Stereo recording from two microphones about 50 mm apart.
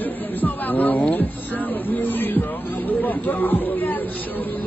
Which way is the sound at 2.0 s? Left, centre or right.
Left.